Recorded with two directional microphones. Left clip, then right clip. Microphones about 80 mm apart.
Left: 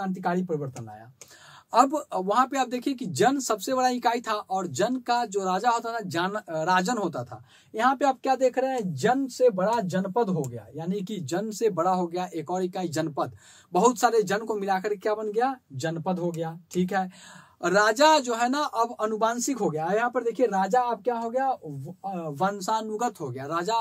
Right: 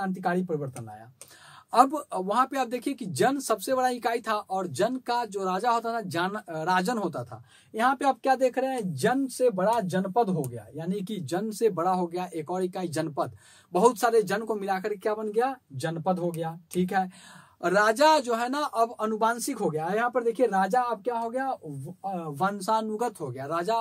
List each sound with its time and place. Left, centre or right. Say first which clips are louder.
0.0 s speech: even; centre
1.7 s speech: even; centre
7.9 s speech: right 1 dB; centre
11.4 s speech: left 1 dB; left
15.3 s speech: right 1 dB; left
15.8 s speech: right 1 dB; centre
17.6 s speech: left 1 dB; left
20.1 s speech: even; centre
22.0 s speech: even; centre
22.6 s speech: even; left